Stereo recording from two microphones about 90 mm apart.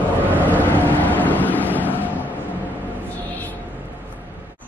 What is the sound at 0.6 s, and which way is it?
Vehicle, 20° left (ahead or behind).